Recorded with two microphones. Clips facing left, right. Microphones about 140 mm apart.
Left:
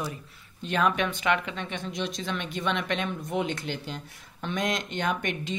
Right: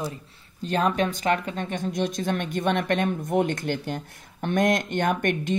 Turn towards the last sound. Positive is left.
turn(degrees=-55)  # may be behind; listen again after turning